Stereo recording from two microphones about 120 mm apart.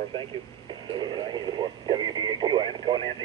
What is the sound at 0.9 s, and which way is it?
Speech, 40° right (ahead or behind).